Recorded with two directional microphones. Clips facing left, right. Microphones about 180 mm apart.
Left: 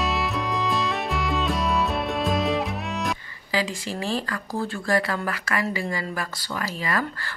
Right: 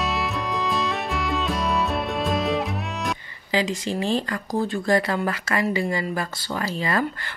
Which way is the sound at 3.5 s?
20° right (ahead or behind).